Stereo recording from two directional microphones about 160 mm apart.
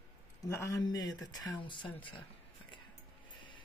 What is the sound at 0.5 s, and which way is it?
Speech, 20° left (ahead or behind).